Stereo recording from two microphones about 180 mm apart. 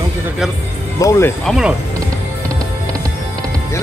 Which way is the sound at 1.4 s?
Centre (ahead or behind).